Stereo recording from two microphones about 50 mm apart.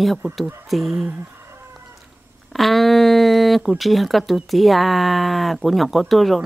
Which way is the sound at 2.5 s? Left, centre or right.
Centre.